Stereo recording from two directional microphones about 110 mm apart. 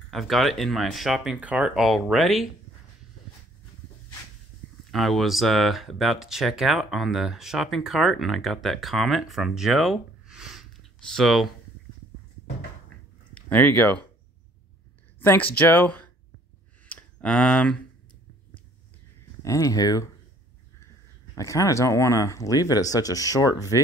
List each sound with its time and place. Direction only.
0.1 s speech: centre (ahead or behind)
4.9 s speech: centre (ahead or behind)
13.3 s speech: 15° left (ahead or behind)
15.1 s speech: 15° left (ahead or behind)
16.9 s a sound: 10° left (ahead or behind)
19.4 s speech: 30° left (ahead or behind)
21.4 s speech: 30° left (ahead or behind)